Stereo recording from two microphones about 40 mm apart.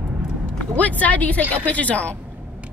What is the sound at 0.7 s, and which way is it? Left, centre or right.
Speech, left.